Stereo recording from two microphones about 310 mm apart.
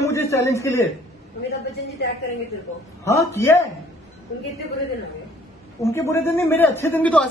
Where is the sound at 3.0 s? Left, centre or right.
Centre.